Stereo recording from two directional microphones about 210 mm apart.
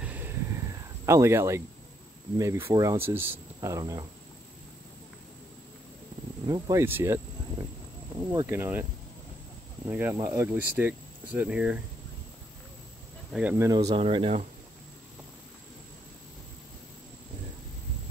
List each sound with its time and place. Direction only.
0.0 s a sound: 10° right (ahead or behind)
2.3 s speech: 15° right (ahead or behind)
6.4 s speech: 15° right (ahead or behind)
8.3 s speech: 10° right (ahead or behind)
9.8 s speech: 10° right (ahead or behind)
13.3 s speech: 5° right (ahead or behind)
13.8 s speech: 25° right (ahead or behind)